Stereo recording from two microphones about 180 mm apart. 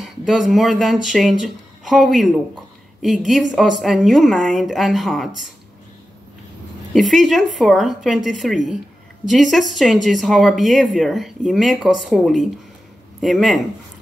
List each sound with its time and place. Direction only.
0.0 s a woman's voice: centre (ahead or behind)
6.9 s speech: centre (ahead or behind)